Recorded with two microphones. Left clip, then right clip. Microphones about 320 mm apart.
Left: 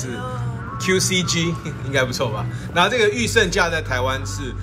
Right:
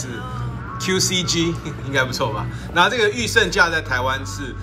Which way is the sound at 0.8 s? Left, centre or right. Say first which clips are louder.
Left 1 dB; centre.